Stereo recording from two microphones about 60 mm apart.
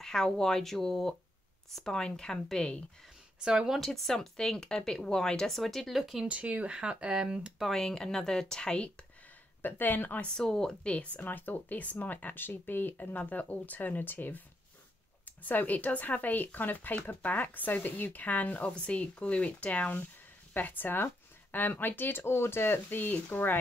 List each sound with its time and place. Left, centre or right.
0.0 s speech: centre
3.3 s speech: centre
3.8 s speech: centre
6.2 s speech: right
7.7 s speech: centre
9.6 s speech: left
10.3 s speech: centre
11.1 s speech: left